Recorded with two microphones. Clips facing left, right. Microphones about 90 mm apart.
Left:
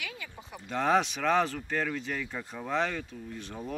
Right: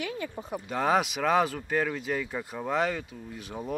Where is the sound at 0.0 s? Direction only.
40° right (ahead or behind).